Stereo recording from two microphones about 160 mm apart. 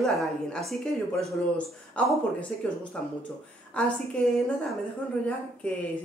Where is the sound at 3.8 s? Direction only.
5° left (ahead or behind).